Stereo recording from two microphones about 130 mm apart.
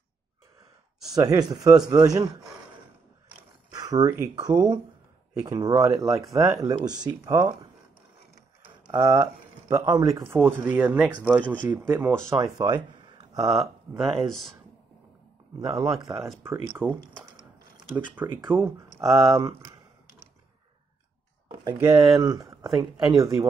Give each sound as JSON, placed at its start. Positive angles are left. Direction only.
{"t": 1.1, "sound": "speech", "side_deg": -30}
{"t": 3.7, "sound": "speech", "side_deg": -30}
{"t": 8.6, "sound": "speech", "side_deg": -35}
{"t": 14.2, "sound": "speech", "side_deg": 0}
{"t": 15.7, "sound": "speech", "side_deg": -25}
{"t": 16.8, "sound": "speech", "side_deg": 5}
{"t": 18.2, "sound": "speech", "side_deg": -15}
{"t": 21.8, "sound": "speech", "side_deg": -25}